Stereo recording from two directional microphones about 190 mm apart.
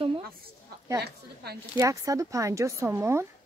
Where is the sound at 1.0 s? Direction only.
55° right (ahead or behind).